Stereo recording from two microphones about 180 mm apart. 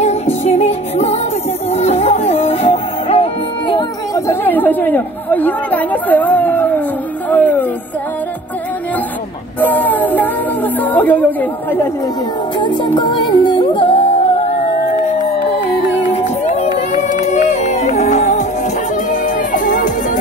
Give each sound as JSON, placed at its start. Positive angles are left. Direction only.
{"t": 0.0, "sound": "music", "side_deg": 35}
{"t": 9.6, "sound": "a sound", "side_deg": 10}
{"t": 12.5, "sound": "music", "side_deg": 25}
{"t": 17.2, "sound": "music", "side_deg": 40}